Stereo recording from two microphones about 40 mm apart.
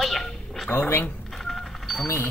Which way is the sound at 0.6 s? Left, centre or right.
Left.